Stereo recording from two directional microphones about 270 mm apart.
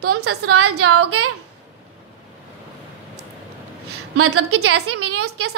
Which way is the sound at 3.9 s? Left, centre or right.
Right.